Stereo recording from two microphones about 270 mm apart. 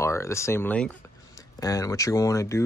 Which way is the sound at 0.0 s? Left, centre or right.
Centre.